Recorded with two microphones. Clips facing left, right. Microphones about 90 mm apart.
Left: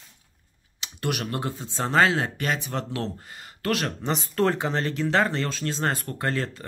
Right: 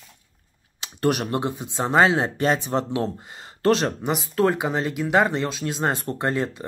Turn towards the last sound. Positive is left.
turn(degrees=-20)  # may be behind; listen again after turning